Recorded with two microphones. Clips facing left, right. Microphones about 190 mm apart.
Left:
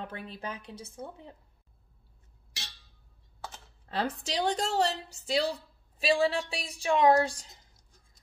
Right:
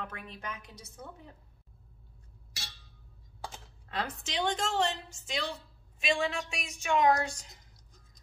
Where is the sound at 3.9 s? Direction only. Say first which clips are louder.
Left 5 dB; 30° left (ahead or behind).